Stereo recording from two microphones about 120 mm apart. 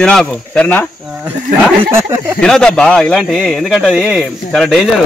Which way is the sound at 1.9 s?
25° right (ahead or behind).